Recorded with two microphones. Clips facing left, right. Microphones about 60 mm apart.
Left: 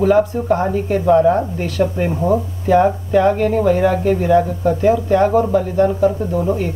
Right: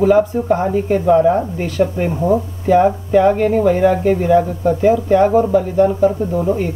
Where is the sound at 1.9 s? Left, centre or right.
Centre.